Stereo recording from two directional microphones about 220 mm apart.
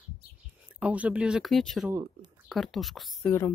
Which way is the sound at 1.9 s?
20° right (ahead or behind).